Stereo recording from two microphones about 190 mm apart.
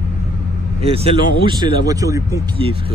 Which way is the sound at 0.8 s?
30° right (ahead or behind).